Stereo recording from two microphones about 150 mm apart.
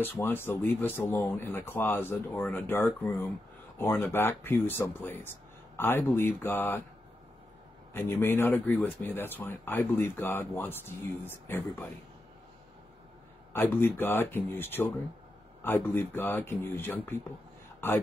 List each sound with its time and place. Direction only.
0.0 s speech: 15° left (ahead or behind)
7.9 s speech: 15° left (ahead or behind)
13.5 s a man's voice: 15° left (ahead or behind)